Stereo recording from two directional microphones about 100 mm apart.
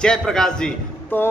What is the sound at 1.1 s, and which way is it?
Music, 20° left (ahead or behind).